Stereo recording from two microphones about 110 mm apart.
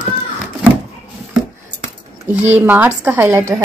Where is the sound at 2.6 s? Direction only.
15° right (ahead or behind).